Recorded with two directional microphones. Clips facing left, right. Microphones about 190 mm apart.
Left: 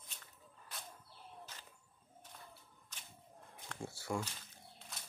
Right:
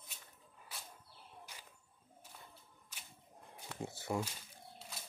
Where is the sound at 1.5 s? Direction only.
10° right (ahead or behind).